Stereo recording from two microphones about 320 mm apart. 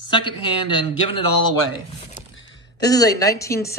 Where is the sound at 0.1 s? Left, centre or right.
Centre.